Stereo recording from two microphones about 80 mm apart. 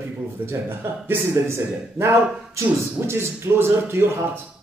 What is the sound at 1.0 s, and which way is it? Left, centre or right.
A man's voice, right.